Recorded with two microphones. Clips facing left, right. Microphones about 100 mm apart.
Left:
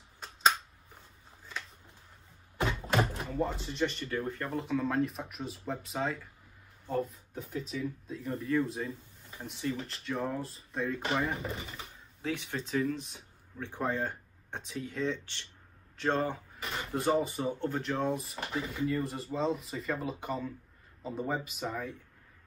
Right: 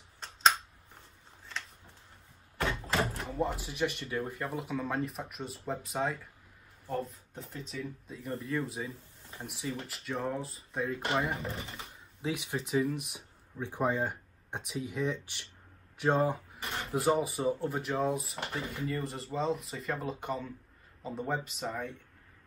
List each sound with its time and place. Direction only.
3.2 s speech: centre (ahead or behind)
12.2 s speech: 15° right (ahead or behind); by 21.9 s centre (ahead or behind)